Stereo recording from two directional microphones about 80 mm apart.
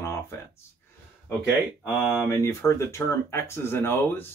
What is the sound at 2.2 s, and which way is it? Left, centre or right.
Speech, left.